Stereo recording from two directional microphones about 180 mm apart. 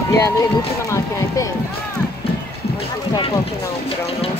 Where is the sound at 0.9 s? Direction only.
15° left (ahead or behind).